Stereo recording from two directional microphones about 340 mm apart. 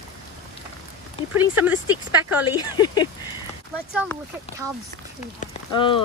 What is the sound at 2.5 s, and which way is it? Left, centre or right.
Speech, centre.